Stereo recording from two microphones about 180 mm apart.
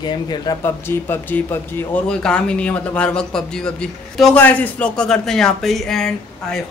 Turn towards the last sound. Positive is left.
turn(degrees=5)  # may be behind; listen again after turning